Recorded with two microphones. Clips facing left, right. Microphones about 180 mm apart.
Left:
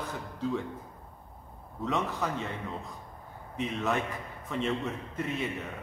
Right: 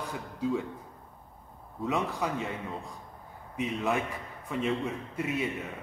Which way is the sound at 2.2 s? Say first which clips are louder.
Right 1 dB; 10° right (ahead or behind).